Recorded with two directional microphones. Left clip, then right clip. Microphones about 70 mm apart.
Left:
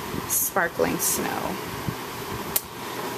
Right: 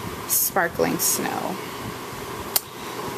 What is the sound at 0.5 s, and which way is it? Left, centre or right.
Speech, right.